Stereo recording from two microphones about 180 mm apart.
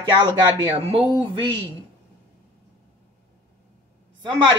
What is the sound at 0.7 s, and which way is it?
Speech, 30° right (ahead or behind).